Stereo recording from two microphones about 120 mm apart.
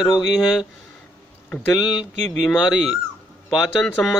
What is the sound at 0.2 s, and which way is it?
Speech, 5° right (ahead or behind).